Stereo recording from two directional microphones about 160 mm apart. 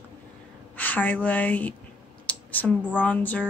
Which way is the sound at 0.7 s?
10° left (ahead or behind).